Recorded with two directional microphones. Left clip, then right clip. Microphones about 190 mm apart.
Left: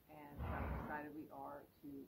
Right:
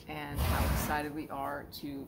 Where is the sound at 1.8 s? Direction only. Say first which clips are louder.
Right 13 dB; 30° right (ahead or behind).